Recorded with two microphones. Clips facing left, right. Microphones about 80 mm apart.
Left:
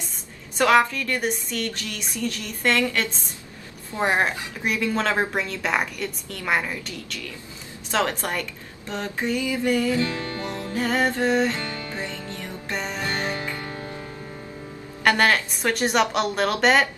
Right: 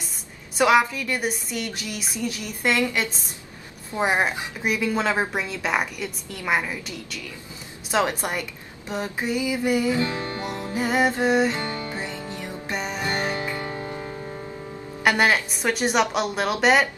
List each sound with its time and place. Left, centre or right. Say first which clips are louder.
0.6 s a woman's voice: even; centre
9.9 s music: even; right
11.5 s music: right 2 dB; right
12.0 s music: right 1 dB; centre
13.0 s music: right 1 dB; right
15.0 s a woman's voice: even; centre